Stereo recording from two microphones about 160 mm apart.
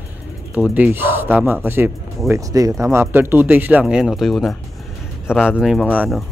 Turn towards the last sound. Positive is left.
turn(degrees=0)  # may be behind; listen again after turning